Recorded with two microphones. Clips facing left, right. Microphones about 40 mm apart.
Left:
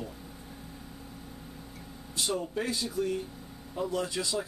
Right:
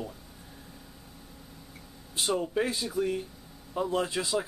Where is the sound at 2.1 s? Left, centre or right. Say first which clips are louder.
Right 4 dB; centre.